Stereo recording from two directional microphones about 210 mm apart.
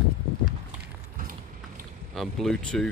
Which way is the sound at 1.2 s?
40° right (ahead or behind).